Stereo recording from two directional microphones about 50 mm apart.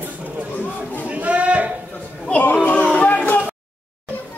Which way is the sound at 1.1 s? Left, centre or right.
Right.